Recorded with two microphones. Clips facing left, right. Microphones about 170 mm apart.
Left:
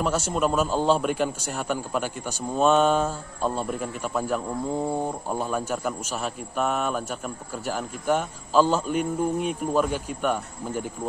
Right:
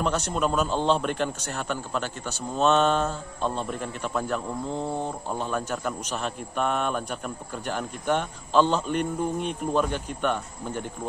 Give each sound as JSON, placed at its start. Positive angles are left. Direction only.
{"t": 0.0, "sound": "a man's voice", "side_deg": 5}